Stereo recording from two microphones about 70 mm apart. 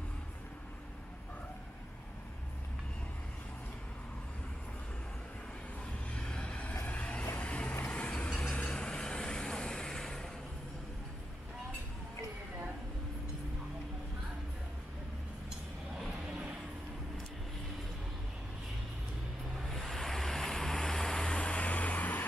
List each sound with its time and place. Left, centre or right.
6.1 s vehicle: centre
19.7 s vehicle: centre; by 22.2 s left